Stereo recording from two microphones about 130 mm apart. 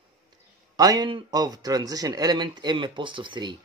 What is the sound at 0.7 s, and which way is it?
Speech, 30° right (ahead or behind).